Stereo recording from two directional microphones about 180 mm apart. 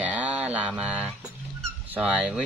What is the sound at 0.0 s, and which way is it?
Mantra, 10° right (ahead or behind).